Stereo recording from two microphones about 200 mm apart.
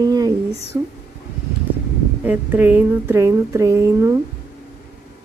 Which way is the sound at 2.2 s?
10° right (ahead or behind).